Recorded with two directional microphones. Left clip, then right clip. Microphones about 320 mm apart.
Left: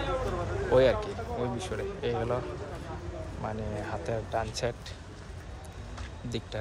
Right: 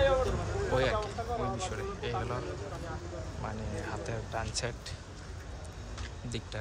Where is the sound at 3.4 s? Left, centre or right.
Centre.